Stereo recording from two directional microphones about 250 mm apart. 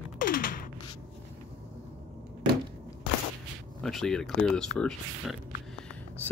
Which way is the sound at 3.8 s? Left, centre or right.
Centre.